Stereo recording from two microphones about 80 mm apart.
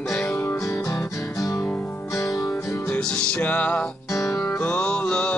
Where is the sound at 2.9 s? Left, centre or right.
Centre.